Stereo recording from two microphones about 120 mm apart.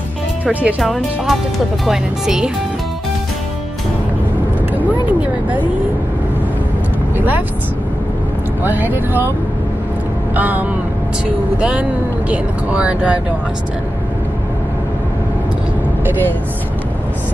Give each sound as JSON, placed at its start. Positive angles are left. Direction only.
{"t": 0.5, "sound": "speech", "side_deg": -15}
{"t": 0.7, "sound": "speech", "side_deg": 0}
{"t": 7.2, "sound": "speech", "side_deg": -15}
{"t": 8.6, "sound": "speech", "side_deg": -15}
{"t": 10.3, "sound": "speech", "side_deg": -15}